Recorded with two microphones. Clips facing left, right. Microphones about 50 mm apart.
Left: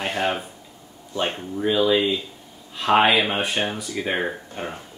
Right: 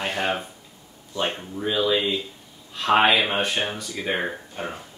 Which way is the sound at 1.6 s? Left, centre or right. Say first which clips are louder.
Left 3 dB; centre.